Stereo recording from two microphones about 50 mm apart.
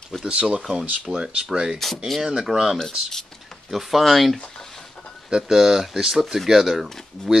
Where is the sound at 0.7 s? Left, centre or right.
Centre.